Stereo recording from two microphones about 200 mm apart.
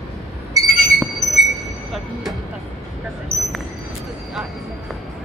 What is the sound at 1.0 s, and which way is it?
Train, centre (ahead or behind).